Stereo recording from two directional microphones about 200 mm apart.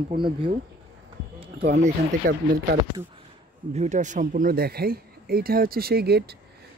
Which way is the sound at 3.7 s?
35° right (ahead or behind).